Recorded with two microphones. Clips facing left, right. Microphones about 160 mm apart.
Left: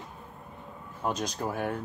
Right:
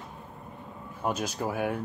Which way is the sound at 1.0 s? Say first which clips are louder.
Right 1 dB; 5° right (ahead or behind).